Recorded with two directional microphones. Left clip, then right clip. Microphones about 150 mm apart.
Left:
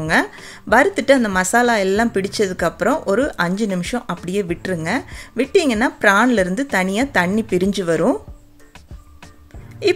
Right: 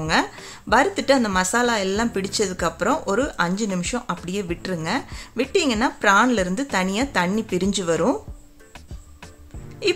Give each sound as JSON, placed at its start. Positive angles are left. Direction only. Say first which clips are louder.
{"t": 0.0, "sound": "a woman's voice", "louder": "left 4 dB", "side_deg": 30}
{"t": 9.8, "sound": "a woman's voice", "louder": "left 5 dB", "side_deg": 25}